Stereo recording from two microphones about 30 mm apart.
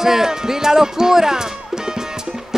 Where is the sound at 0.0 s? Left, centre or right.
Centre.